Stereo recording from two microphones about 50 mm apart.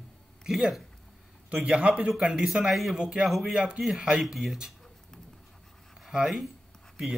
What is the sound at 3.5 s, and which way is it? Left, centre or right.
Speech, centre.